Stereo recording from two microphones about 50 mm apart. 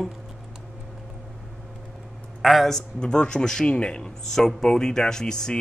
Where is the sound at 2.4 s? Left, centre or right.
Centre.